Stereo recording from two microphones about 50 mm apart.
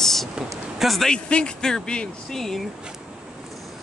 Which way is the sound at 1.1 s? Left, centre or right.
Centre.